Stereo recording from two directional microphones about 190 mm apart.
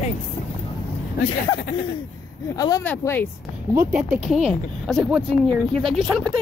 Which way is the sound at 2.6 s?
20° left (ahead or behind).